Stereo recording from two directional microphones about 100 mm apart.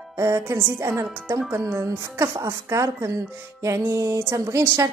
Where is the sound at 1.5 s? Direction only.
30° right (ahead or behind).